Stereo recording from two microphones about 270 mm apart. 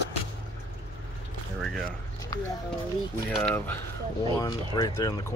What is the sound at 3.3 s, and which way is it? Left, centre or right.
Speech, centre.